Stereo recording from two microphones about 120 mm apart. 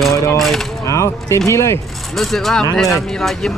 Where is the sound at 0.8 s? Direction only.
25° left (ahead or behind).